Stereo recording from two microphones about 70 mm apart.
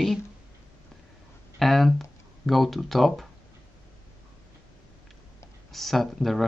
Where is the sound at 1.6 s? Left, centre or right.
Centre.